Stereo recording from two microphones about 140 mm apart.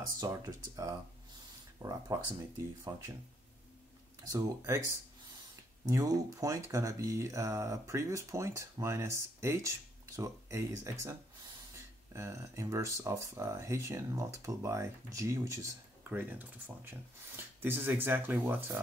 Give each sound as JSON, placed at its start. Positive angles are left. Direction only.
{"t": 0.2, "sound": "speech", "side_deg": -25}
{"t": 4.3, "sound": "speech", "side_deg": -20}
{"t": 5.9, "sound": "speech", "side_deg": -25}